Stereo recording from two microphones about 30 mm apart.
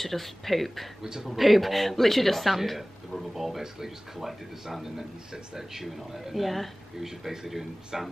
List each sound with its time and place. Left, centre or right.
0.0 s speech: centre
1.0 s speech: centre
1.3 s speech: centre